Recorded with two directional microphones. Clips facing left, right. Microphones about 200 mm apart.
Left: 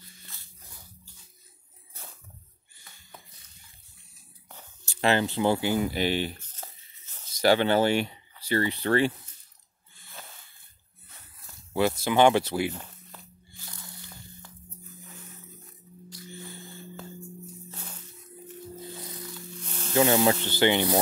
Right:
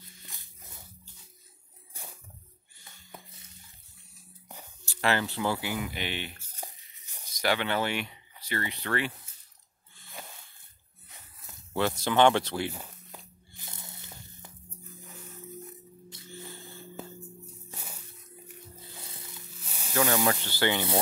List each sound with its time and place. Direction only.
0.3 s dog: 20° right (ahead or behind)
2.0 s snake: 10° right (ahead or behind)
4.8 s speech: 20° left (ahead or behind)
5.8 s speech: 35° left (ahead or behind)
6.4 s music: 10° right (ahead or behind)
7.3 s speech: 30° left (ahead or behind)
10.2 s a sound: 10° right (ahead or behind)
11.7 s speech: 10° left (ahead or behind)
12.7 s a sound: 15° right (ahead or behind)
17.6 s music: 10° right (ahead or behind)
19.0 s tearing: 25° right (ahead or behind)
19.6 s snake: 10° right (ahead or behind)
20.0 s speech: 20° left (ahead or behind)